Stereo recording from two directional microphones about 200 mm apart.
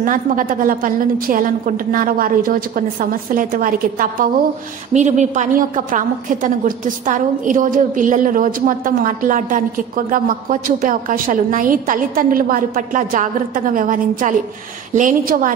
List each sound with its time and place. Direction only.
0.0 s a woman's voice: 40° right (ahead or behind)